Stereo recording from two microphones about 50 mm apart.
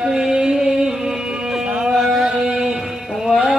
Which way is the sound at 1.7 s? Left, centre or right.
Centre.